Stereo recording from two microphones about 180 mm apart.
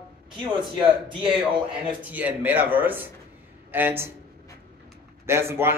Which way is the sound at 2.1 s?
10° right (ahead or behind).